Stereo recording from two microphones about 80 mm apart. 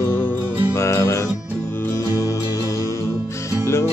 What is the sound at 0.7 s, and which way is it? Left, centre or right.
Music, left.